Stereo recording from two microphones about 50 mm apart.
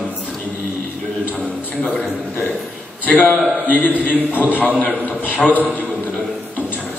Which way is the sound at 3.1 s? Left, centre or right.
Left.